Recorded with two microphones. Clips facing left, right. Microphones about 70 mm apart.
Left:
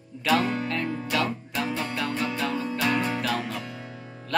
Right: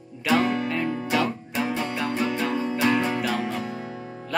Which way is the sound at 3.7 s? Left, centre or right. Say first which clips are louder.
Right 6 dB; right.